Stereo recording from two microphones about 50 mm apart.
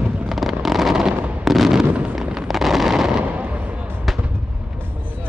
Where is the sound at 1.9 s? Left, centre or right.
Right.